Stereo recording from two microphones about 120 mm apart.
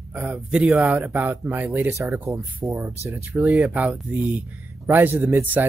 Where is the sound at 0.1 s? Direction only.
10° right (ahead or behind).